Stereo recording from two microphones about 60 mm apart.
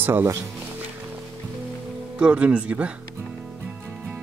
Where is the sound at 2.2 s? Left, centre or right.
Right.